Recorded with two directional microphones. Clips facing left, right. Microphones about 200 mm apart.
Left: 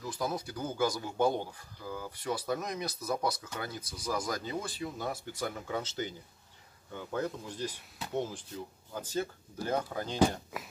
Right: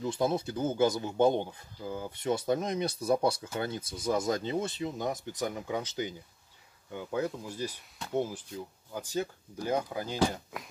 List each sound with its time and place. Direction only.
0.0 s speech: 25° right (ahead or behind); by 10.1 s 10° right (ahead or behind)
10.3 s speech: 5° left (ahead or behind)